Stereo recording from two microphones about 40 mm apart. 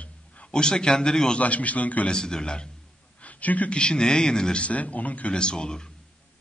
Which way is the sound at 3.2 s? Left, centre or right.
Left.